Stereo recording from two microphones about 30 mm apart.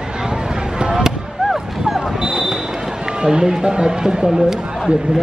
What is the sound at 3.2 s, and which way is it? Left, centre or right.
Speech, right.